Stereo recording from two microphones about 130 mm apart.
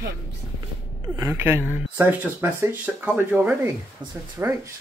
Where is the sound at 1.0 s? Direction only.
30° right (ahead or behind).